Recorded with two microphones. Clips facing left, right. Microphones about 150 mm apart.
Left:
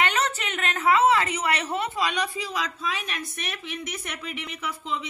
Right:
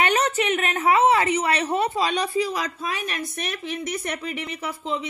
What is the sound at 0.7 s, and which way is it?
A woman's voice, 30° right (ahead or behind).